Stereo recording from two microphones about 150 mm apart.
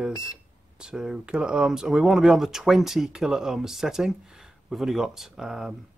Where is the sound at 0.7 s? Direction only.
5° right (ahead or behind).